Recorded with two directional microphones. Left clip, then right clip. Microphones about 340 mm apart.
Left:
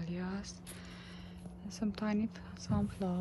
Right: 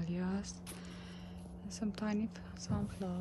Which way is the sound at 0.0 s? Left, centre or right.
Centre.